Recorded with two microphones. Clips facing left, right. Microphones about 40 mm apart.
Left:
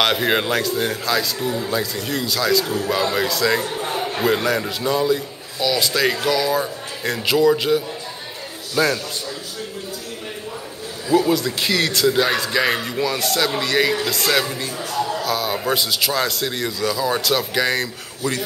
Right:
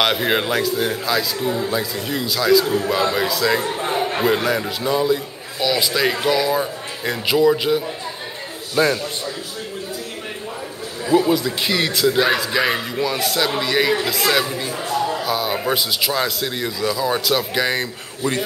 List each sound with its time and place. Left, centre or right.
0.0 s a man's voice: centre
1.4 s a man's voice: centre
1.7 s a man's voice: centre
3.6 s a man's voice: right
4.2 s a man's voice: centre
11.1 s a man's voice: centre
18.2 s a man's voice: right